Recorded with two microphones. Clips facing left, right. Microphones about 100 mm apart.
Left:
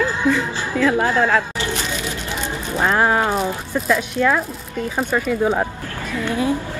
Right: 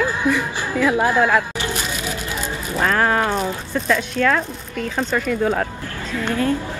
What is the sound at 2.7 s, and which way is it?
Speech, 20° left (ahead or behind).